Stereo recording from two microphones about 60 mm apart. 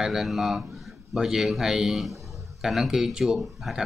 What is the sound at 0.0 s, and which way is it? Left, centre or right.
Speech, centre.